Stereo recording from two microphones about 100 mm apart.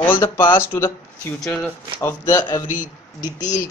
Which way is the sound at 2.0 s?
30° left (ahead or behind).